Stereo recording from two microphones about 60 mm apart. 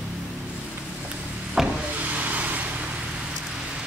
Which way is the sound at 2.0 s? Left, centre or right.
Right.